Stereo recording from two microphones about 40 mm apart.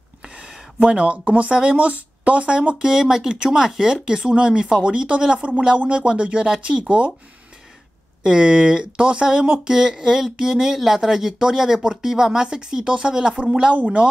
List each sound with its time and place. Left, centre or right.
0.9 s speech: right
2.8 s speech: centre
3.4 s speech: centre; by 6.4 s right
8.2 s speech: centre